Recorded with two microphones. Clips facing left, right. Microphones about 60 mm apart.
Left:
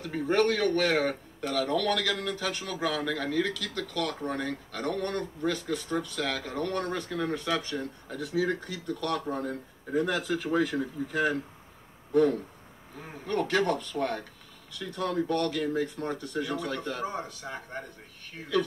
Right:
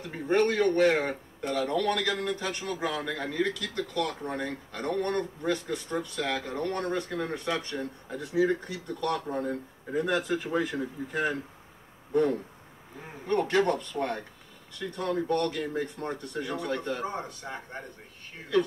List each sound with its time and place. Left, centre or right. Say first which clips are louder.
0.0 s speech: even; right
13.3 s speech: right 2 dB; right